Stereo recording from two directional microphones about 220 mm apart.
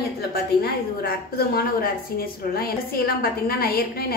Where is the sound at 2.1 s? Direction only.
45° left (ahead or behind).